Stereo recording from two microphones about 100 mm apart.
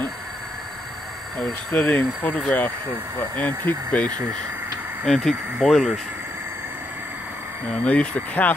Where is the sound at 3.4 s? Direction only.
15° left (ahead or behind).